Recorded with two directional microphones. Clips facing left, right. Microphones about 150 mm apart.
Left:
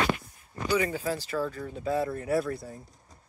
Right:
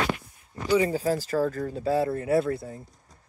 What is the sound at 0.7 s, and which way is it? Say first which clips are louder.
Speech: right 5 dB; 30° right (ahead or behind).